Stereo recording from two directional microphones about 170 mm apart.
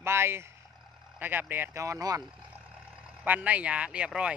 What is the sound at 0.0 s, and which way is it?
Vehicle, 15° right (ahead or behind).